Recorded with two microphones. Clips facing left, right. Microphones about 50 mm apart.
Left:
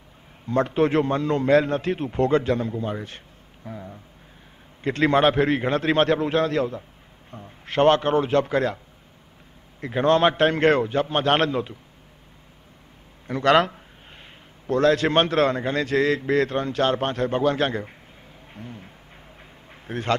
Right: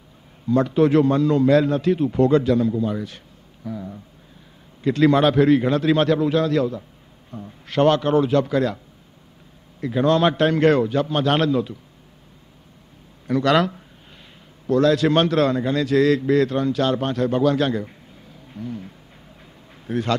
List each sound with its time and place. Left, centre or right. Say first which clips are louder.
0.5 s a man's voice: right 4 dB; left
4.8 s a man's voice: right 2 dB; left
9.8 s a man's voice: right 1 dB; left
13.3 s a man's voice: even; left
14.7 s a man's voice: right 2 dB; left
19.4 s a sound: right 5 dB; left